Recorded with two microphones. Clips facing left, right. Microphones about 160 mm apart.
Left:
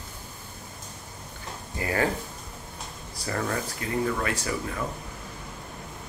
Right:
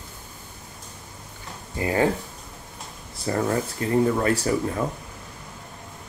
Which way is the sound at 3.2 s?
25° right (ahead or behind).